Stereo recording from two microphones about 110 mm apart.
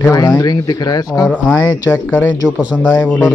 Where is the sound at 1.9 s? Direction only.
15° left (ahead or behind).